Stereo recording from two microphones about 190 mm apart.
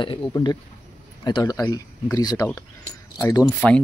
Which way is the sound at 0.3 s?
20° left (ahead or behind).